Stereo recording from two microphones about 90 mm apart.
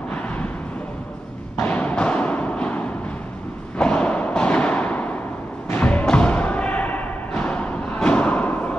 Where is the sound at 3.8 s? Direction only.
15° left (ahead or behind).